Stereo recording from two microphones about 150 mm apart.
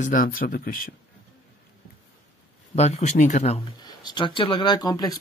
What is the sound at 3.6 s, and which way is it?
Speech, 30° left (ahead or behind).